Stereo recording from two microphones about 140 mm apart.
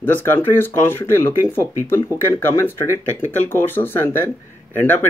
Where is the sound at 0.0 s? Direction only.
15° left (ahead or behind).